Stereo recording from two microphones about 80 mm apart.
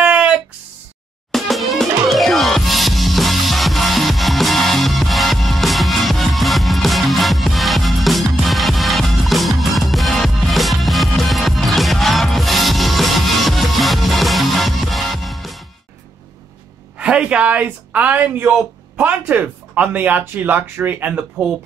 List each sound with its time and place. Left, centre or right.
0.0 s a sound: centre
1.3 s music: centre
17.0 s speech: centre